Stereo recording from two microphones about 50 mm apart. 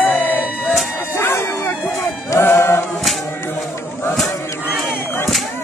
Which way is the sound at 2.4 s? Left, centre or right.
Left.